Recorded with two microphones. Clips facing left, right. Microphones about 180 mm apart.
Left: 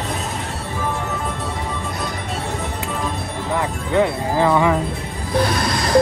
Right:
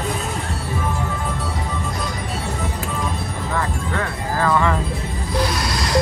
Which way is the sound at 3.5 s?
15° left (ahead or behind).